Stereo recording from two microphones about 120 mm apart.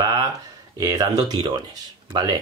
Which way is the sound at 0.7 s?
35° right (ahead or behind).